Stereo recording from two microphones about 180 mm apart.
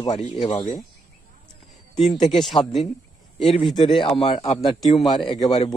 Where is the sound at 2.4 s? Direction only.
Centre (ahead or behind).